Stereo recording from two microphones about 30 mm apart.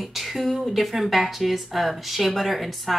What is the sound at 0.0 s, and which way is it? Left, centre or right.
A woman's voice, centre.